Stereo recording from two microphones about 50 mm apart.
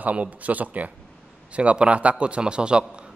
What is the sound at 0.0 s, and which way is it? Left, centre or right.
Speech, right.